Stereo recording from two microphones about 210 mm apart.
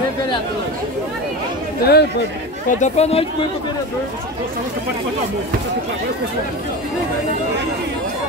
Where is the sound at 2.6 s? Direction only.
35° left (ahead or behind).